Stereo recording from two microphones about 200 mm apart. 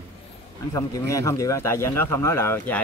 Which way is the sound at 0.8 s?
15° left (ahead or behind).